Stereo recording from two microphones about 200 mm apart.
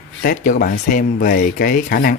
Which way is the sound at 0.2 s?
45° left (ahead or behind).